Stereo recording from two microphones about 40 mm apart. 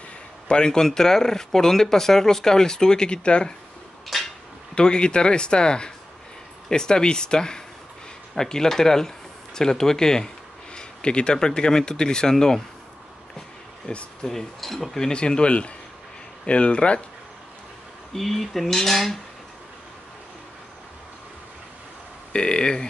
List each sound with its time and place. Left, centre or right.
0.5 s speech: centre
4.1 s a sound: centre
4.7 s speech: left
13.9 s speech: left
14.2 s speech: centre
15.1 s speech: left
18.1 s speech: centre
22.3 s speech: left